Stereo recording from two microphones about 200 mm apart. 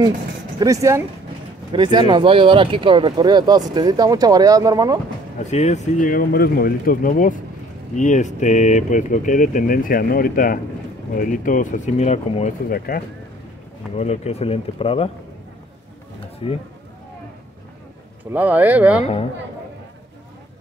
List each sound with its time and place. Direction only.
0.6 s speech: 15° right (ahead or behind)
5.4 s speech: 35° left (ahead or behind)
13.9 s speech: 35° left (ahead or behind)
16.4 s speech: 25° left (ahead or behind)
18.3 s speech: 10° right (ahead or behind)